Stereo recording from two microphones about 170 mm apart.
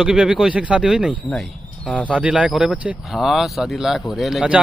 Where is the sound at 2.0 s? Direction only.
10° right (ahead or behind).